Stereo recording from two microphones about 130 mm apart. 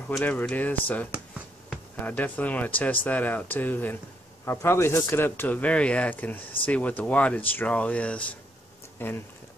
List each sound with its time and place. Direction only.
0.2 s speech: 10° left (ahead or behind)